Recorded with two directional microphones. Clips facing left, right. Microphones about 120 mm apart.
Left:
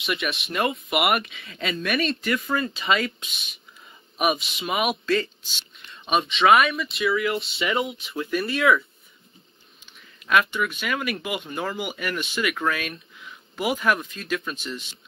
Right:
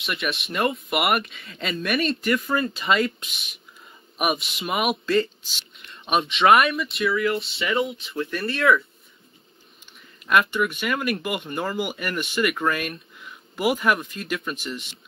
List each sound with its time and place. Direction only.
0.0 s speech: centre (ahead or behind)
7.2 s speech: 25° left (ahead or behind)
8.3 s speech: 5° left (ahead or behind)
10.2 s speech: 5° right (ahead or behind)